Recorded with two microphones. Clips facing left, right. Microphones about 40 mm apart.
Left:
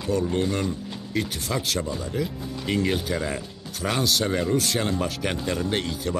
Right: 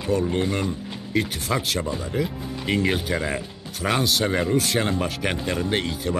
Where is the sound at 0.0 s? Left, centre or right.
Right.